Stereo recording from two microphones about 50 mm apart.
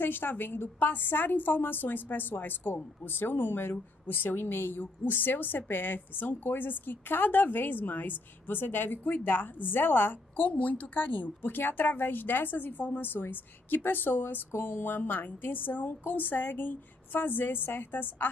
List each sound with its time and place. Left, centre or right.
0.0 s a woman's voice: left
10.5 s a woman's voice: left